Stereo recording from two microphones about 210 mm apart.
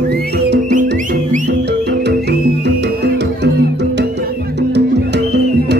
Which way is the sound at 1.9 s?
50° right (ahead or behind).